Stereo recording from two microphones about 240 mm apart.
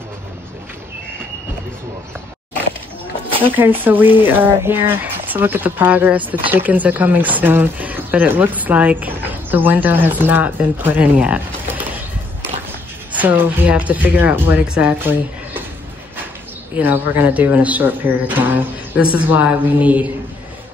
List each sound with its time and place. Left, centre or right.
3.4 s speech: centre
13.1 s speech: centre
16.7 s speech: centre